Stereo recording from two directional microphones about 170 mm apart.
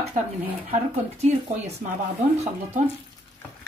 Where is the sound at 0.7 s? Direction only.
40° right (ahead or behind).